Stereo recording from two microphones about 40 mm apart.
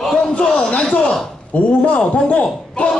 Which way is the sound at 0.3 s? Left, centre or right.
Left.